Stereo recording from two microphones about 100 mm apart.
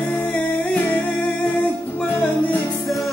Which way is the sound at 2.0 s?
15° left (ahead or behind).